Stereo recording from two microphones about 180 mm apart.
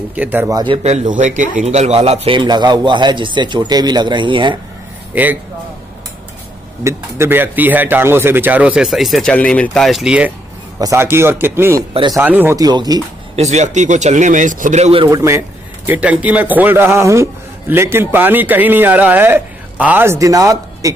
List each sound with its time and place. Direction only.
0.1 s a man's voice: 10° right (ahead or behind)
1.1 s a man's voice: 45° right (ahead or behind); by 4.6 s 25° right (ahead or behind)
5.1 s a man's voice: 10° right (ahead or behind)
6.8 s a man's voice: 15° right (ahead or behind)
11.9 s a man's voice: 25° right (ahead or behind)
12.2 s a man's voice: 10° right (ahead or behind)
13.4 s speech: 40° right (ahead or behind)
15.0 s a man's voice: 15° right (ahead or behind)